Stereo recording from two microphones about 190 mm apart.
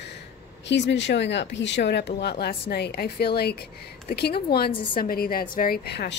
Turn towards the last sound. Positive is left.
turn(degrees=55)  # may be behind; listen again after turning